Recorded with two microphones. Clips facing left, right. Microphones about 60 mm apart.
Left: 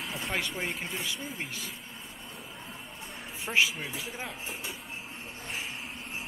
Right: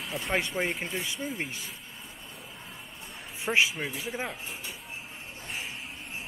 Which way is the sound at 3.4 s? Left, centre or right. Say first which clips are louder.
Right 2 dB; right.